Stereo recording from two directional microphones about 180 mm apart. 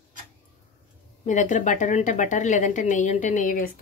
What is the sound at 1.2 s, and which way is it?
A woman's voice, 45° left (ahead or behind).